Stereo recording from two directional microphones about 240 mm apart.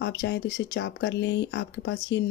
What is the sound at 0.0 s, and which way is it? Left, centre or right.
Speech, left.